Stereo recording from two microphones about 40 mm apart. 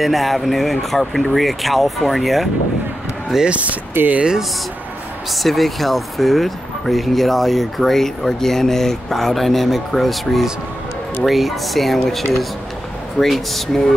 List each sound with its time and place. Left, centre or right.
0.0 s speech: centre
3.4 s speech: right
4.0 s speech: right
5.3 s speech: centre